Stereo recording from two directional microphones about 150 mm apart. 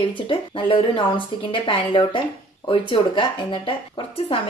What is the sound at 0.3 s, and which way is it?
A woman's voice, 35° left (ahead or behind).